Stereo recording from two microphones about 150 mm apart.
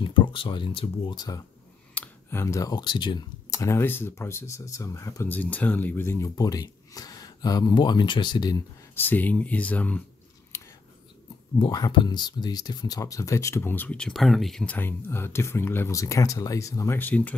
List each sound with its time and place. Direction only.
0.0 s speech: 35° left (ahead or behind)
8.9 s speech: 10° left (ahead or behind)
10.5 s whispering: 20° left (ahead or behind)
11.5 s speech: 30° left (ahead or behind); by 17.4 s 10° left (ahead or behind)